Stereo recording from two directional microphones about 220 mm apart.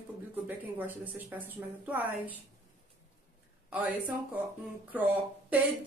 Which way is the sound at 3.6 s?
5° right (ahead or behind).